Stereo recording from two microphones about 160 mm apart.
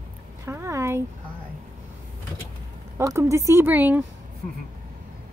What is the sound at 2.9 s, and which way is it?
Speech, 20° right (ahead or behind).